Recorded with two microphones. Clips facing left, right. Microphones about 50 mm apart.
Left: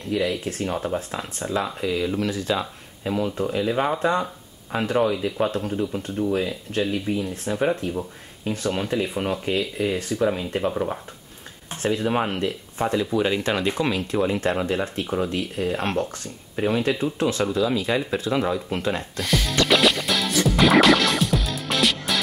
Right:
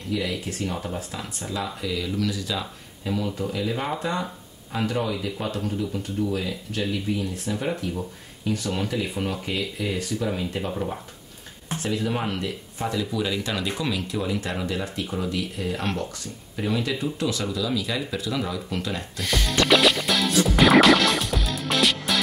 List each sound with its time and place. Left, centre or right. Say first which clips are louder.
0.1 s speech: left 4 dB; left; by 11.0 s centre
11.8 s speech: left 4 dB; left
19.1 s speech: left 2 dB; centre
19.7 s music: even; centre